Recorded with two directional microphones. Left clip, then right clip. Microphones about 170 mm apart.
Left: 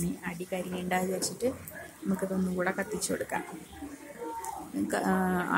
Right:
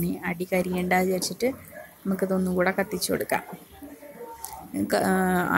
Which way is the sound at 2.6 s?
30° right (ahead or behind).